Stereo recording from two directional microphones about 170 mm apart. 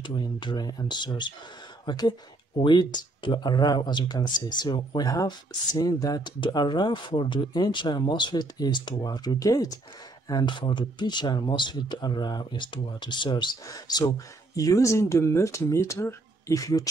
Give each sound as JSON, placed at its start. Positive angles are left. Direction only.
{"t": 0.0, "sound": "speech", "side_deg": 25}